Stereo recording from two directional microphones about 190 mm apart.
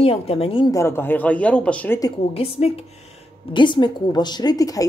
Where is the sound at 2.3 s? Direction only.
30° left (ahead or behind).